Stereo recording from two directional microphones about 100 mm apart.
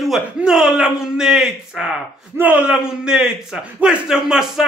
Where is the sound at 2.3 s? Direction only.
15° right (ahead or behind).